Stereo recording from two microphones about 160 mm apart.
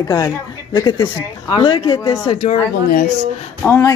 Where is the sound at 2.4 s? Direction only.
65° left (ahead or behind).